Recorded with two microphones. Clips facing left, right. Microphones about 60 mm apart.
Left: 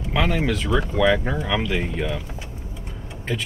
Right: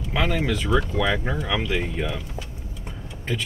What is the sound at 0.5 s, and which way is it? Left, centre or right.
Speech, centre.